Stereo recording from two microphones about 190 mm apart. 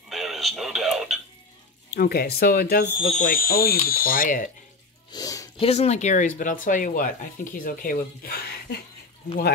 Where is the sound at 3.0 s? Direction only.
40° left (ahead or behind).